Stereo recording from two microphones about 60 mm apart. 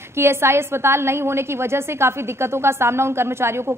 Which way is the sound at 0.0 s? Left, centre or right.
Right.